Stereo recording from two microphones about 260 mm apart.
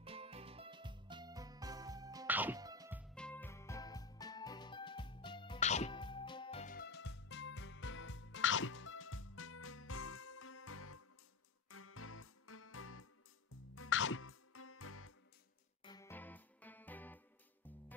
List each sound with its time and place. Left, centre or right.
0.0 s music: right
3.2 s music: centre; by 15.1 s left
15.8 s music: centre